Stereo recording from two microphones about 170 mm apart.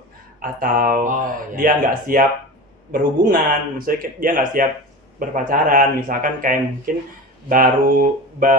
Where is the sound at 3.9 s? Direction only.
55° right (ahead or behind).